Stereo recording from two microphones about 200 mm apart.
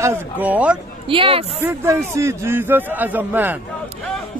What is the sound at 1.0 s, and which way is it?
Speech, 25° right (ahead or behind).